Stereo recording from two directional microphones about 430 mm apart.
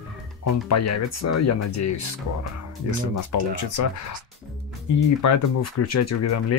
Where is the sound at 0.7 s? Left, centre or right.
Left.